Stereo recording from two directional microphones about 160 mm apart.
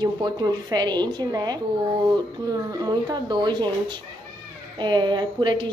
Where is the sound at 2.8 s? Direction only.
25° right (ahead or behind).